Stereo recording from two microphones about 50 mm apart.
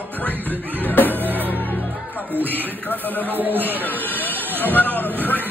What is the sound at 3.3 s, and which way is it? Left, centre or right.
Speech, right.